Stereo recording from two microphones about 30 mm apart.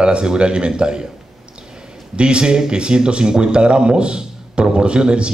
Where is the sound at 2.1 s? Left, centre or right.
Right.